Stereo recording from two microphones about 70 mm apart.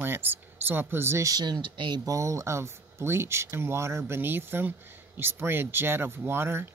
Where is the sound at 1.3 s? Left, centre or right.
Right.